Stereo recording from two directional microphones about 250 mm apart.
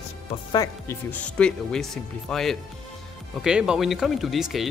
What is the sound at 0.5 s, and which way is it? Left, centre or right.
Speech, centre.